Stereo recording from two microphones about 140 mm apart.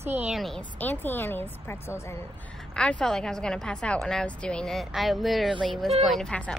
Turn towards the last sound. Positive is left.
turn(degrees=5)  # may be behind; listen again after turning